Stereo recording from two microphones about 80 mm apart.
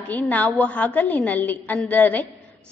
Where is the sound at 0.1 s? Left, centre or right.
Centre.